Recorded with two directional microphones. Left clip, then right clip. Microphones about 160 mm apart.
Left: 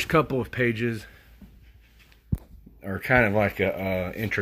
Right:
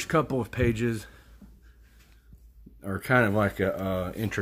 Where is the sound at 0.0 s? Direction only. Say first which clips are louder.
Left 3 dB; 20° left (ahead or behind).